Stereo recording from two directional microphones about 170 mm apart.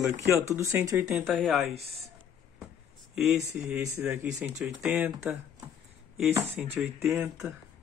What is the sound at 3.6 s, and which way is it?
Speech, 10° right (ahead or behind).